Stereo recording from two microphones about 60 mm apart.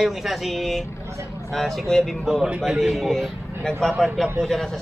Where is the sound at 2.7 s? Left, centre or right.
Centre.